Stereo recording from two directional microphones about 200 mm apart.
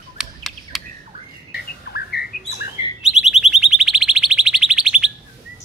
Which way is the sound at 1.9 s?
55° left (ahead or behind).